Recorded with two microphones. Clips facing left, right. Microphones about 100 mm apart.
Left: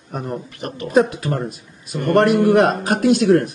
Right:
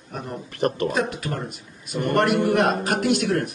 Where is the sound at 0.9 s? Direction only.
35° left (ahead or behind).